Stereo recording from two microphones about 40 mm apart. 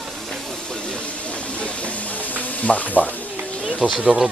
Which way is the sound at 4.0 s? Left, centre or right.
Right.